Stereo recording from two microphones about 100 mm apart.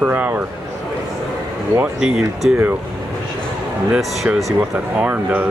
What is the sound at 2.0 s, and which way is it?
Speech, 5° right (ahead or behind).